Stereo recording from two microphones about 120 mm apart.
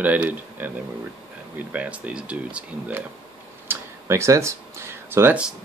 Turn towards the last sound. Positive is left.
turn(degrees=-20)  # may be behind; listen again after turning